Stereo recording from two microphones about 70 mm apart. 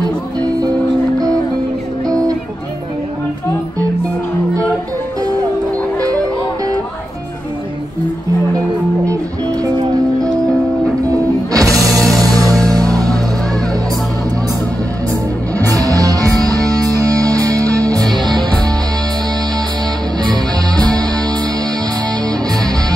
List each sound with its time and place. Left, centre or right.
9.0 s music: right
11.1 s music: right
11.9 s music: centre
12.2 s music: right
15.6 s music: right
20.2 s music: right